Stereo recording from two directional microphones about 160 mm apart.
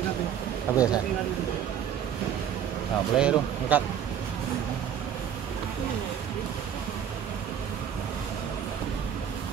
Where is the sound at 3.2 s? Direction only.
5° right (ahead or behind).